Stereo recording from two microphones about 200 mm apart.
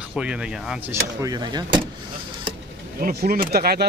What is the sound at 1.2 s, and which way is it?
Speech, 20° right (ahead or behind).